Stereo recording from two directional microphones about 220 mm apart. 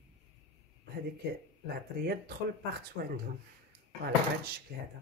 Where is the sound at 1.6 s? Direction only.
45° right (ahead or behind).